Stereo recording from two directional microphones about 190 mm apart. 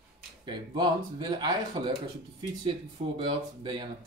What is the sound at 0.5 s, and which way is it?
Speech, 20° right (ahead or behind).